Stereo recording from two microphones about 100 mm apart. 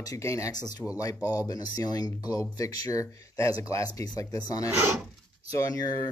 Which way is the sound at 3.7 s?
35° left (ahead or behind).